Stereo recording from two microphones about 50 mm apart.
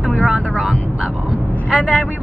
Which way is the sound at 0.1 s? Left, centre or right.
Centre.